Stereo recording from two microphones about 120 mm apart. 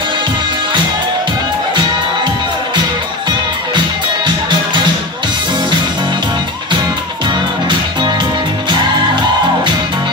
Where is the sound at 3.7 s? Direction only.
40° right (ahead or behind).